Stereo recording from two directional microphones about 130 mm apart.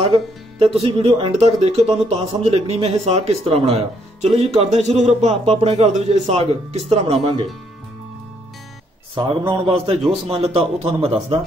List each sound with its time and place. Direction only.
0.6 s speech: 45° right (ahead or behind)
9.5 s speech: 45° right (ahead or behind)